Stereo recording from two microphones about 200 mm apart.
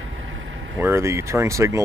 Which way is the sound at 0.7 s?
10° right (ahead or behind).